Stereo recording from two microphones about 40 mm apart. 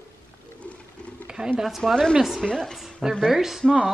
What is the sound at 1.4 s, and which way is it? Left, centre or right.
Speech, right.